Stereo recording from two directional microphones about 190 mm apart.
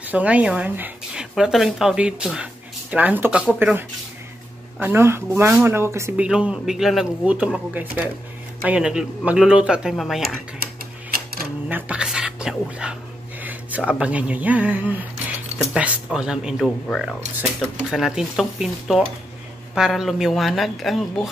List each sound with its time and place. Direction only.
0.1 s speech: 5° right (ahead or behind)
11.7 s speech: 5° right (ahead or behind)